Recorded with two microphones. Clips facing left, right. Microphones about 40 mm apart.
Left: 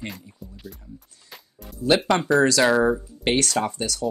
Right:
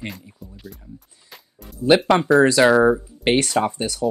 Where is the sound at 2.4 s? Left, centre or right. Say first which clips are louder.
Right 4 dB; right.